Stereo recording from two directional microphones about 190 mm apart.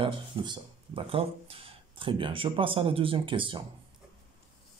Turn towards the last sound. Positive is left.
turn(degrees=-25)  # may be behind; listen again after turning